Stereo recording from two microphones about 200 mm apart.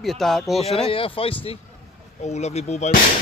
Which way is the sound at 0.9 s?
25° left (ahead or behind).